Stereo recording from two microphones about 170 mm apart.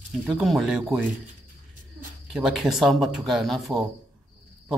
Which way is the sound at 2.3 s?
5° right (ahead or behind).